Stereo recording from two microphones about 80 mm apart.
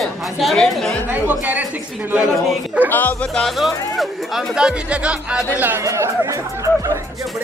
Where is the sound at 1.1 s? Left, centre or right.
Right.